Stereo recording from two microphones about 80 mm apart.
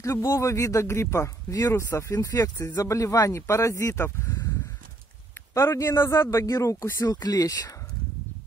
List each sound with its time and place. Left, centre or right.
0.0 s speech: left
5.5 s speech: left